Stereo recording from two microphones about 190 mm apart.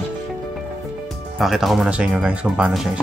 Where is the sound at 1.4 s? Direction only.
Centre (ahead or behind).